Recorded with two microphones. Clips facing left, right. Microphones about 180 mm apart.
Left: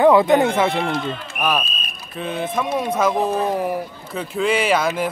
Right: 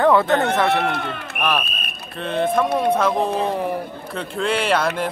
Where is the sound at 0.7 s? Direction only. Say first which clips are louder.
Even; 65° right (ahead or behind).